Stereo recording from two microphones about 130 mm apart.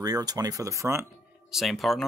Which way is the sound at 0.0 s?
30° right (ahead or behind).